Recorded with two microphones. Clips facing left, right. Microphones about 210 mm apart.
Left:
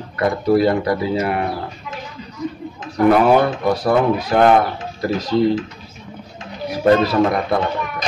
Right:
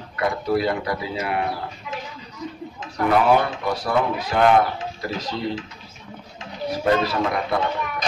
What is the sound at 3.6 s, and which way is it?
Speech, 40° left (ahead or behind).